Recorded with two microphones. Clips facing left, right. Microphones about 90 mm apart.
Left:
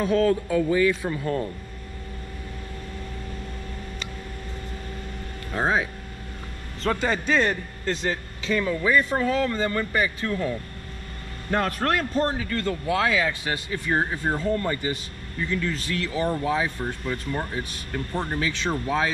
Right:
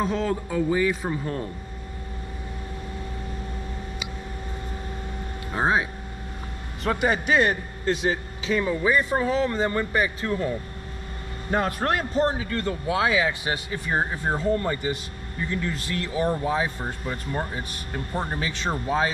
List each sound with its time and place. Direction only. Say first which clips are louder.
0.3 s a man's voice: left 2 dB; 15° right (ahead or behind)
5.5 s a man's voice: right 1 dB; 15° right (ahead or behind)
11.5 s a man's voice: even; 15° right (ahead or behind)